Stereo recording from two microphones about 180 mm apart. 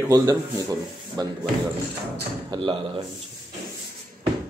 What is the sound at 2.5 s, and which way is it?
Speech, 25° right (ahead or behind).